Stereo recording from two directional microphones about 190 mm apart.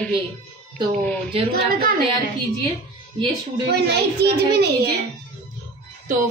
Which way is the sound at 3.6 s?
60° right (ahead or behind).